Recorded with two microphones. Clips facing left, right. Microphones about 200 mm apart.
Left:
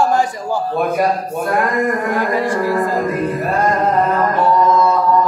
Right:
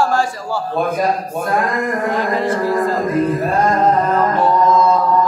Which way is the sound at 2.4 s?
10° left (ahead or behind).